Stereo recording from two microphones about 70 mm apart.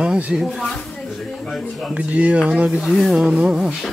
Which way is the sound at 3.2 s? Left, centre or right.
Centre.